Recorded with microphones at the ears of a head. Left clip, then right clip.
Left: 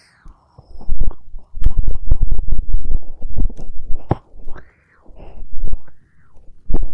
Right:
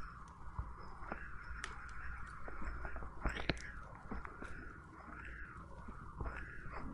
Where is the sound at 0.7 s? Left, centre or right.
Left.